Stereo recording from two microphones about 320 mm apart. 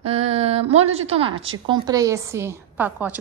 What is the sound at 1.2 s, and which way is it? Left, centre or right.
A woman's voice, centre.